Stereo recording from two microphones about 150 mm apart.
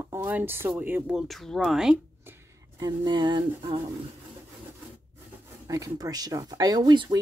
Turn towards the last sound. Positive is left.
turn(degrees=-30)  # may be behind; listen again after turning